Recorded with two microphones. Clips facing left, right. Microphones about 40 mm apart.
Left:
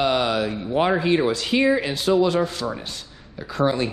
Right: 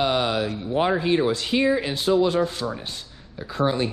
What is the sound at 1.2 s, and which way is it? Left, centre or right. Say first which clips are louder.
Speech: left 1 dB; left.